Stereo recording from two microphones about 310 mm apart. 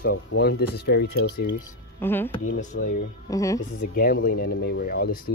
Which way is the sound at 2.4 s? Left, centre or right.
Left.